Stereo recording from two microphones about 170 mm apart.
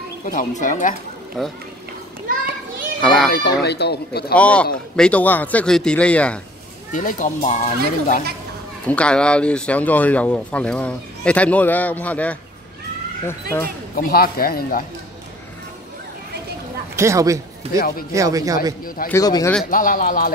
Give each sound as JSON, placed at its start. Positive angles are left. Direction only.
{"t": 0.2, "sound": "speech", "side_deg": 50}
{"t": 1.4, "sound": "a child's voice", "side_deg": 0}
{"t": 3.0, "sound": "a child's voice", "side_deg": 0}
{"t": 3.3, "sound": "speech", "side_deg": 70}
{"t": 4.4, "sound": "speech", "side_deg": 5}
{"t": 6.9, "sound": "speech", "side_deg": 50}
{"t": 8.8, "sound": "speech", "side_deg": 5}
{"t": 13.9, "sound": "a man's voice", "side_deg": 60}
{"t": 16.9, "sound": "a woman's voice", "side_deg": -15}
{"t": 17.7, "sound": "a man's voice", "side_deg": 60}
{"t": 18.1, "sound": "a man's voice", "side_deg": -20}
{"t": 19.0, "sound": "speech", "side_deg": 20}
{"t": 19.6, "sound": "a man's voice", "side_deg": 55}